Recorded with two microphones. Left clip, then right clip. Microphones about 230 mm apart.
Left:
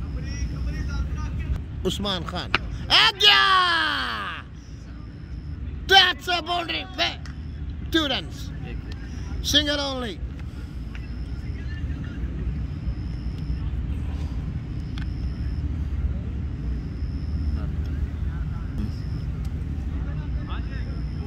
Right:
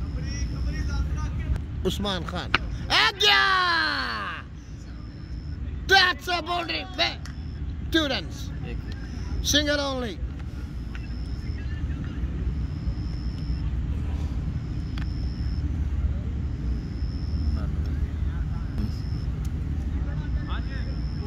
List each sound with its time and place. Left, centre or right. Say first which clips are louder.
0.2 s vehicle: right 1 dB; right
1.8 s a sound: left 2 dB; centre
5.9 s a man's voice: left 3 dB; centre
9.4 s speech: left 1 dB; centre